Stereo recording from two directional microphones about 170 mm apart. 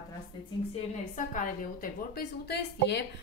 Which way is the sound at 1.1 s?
50° left (ahead or behind).